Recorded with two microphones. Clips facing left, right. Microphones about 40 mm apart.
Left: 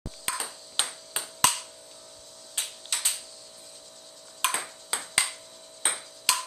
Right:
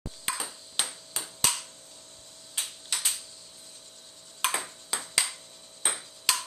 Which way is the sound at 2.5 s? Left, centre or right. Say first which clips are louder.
Left 1 dB; centre.